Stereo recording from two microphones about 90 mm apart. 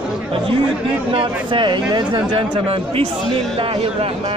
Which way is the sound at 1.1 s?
75° right (ahead or behind).